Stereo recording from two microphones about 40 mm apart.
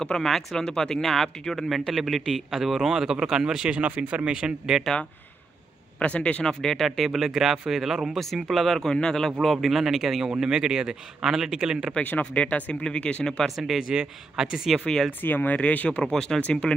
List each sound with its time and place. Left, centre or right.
0.2 s a man's voice: centre
0.6 s a man's voice: centre
3.8 s speech: right
4.3 s a man's voice: centre
5.9 s a man's voice: left
6.4 s a man's voice: centre
8.2 s a man's voice: centre
12.2 s a man's voice: left
13.8 s a man's voice: centre
15.2 s speech: left
15.5 s a man's voice: left
16.0 s speech: centre
16.3 s speech: left